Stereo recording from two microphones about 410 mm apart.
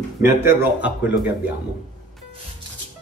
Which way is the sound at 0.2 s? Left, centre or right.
Centre.